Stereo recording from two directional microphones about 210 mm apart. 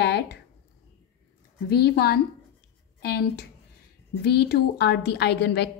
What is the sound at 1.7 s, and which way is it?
A woman's voice, 50° left (ahead or behind).